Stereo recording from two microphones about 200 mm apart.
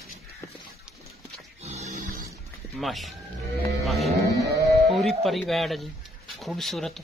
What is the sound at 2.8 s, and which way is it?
Speech, centre (ahead or behind).